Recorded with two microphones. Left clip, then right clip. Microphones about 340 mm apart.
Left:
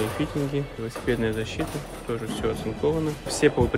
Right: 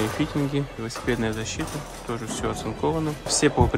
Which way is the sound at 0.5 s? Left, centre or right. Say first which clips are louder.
Right 1 dB; centre.